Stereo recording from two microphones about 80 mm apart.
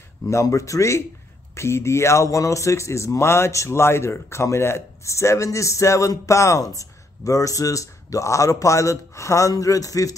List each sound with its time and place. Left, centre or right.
0.3 s speech: left